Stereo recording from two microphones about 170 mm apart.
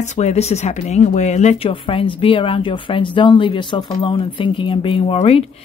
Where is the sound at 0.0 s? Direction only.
40° left (ahead or behind).